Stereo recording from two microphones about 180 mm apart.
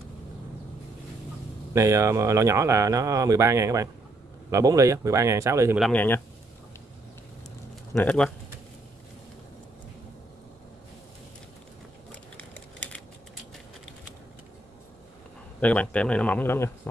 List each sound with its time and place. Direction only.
1.7 s speech: 15° right (ahead or behind)
5.8 s speech: 5° left (ahead or behind)
7.9 s speech: 10° left (ahead or behind)
12.1 s typing: 5° left (ahead or behind)
15.6 s speech: 5° left (ahead or behind)